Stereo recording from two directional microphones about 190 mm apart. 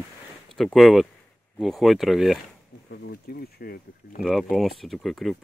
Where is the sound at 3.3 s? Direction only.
55° left (ahead or behind).